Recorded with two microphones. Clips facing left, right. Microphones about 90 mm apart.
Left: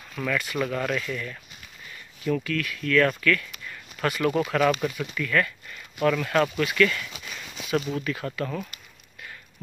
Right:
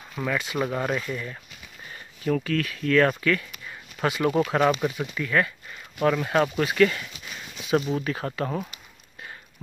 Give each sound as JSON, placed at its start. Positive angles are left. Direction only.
{"t": 0.1, "sound": "speech", "side_deg": -20}